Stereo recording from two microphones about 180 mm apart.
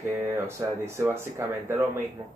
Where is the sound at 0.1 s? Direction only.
15° right (ahead or behind).